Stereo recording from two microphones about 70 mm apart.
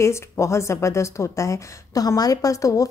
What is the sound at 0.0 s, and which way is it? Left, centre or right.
A woman's voice, left.